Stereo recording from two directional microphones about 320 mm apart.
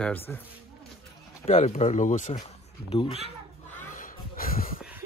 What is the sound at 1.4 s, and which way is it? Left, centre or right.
Speech, centre.